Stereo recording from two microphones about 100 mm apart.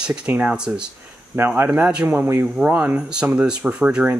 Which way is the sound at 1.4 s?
20° right (ahead or behind).